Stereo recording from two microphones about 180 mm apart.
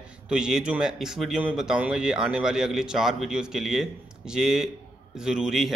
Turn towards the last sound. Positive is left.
turn(degrees=0)  # may be behind; listen again after turning